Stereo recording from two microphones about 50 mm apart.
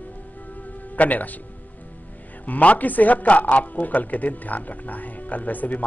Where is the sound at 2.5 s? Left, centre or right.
Left.